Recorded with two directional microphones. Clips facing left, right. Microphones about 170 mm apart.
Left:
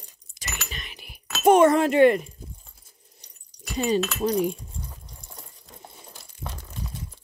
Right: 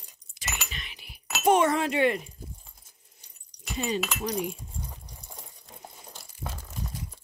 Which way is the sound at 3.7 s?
40° left (ahead or behind).